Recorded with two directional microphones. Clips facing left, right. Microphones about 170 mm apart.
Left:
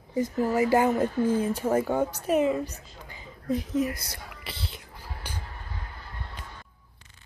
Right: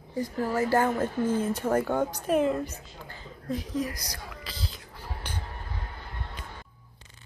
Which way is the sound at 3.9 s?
25° left (ahead or behind).